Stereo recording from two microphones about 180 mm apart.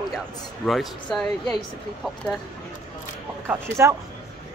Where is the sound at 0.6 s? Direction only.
Centre (ahead or behind).